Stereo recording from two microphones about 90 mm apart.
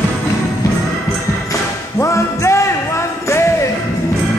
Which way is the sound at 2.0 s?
35° left (ahead or behind).